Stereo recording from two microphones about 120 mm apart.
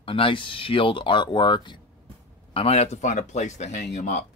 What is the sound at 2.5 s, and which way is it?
Speech, 60° left (ahead or behind).